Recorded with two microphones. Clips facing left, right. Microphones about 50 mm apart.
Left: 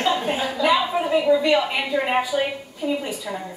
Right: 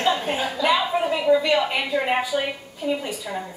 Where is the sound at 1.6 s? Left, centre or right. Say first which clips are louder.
Even; centre.